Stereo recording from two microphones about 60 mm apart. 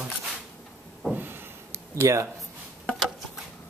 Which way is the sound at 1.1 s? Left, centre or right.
Right.